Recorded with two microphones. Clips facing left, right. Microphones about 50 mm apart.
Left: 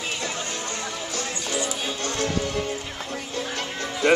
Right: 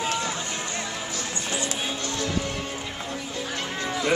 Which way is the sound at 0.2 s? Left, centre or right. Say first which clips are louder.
Even; right.